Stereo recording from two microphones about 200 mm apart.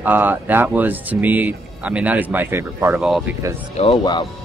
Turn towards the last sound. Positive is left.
turn(degrees=20)  # may be behind; listen again after turning